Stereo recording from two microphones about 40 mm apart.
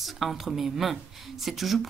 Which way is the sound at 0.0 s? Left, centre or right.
Centre.